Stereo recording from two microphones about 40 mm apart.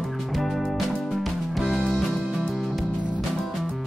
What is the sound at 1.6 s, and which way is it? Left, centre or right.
Music, centre.